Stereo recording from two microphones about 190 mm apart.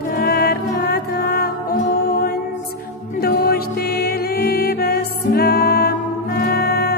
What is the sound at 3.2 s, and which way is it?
Music, 55° left (ahead or behind).